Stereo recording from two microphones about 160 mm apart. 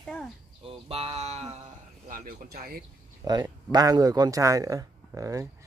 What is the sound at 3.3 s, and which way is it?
Speech, 25° right (ahead or behind).